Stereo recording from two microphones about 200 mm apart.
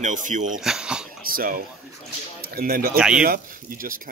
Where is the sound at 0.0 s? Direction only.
40° right (ahead or behind).